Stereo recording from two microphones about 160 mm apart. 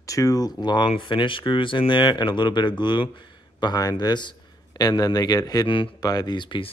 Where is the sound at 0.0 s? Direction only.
20° left (ahead or behind).